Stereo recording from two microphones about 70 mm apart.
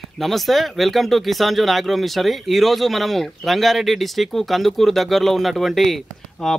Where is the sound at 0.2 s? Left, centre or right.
Centre.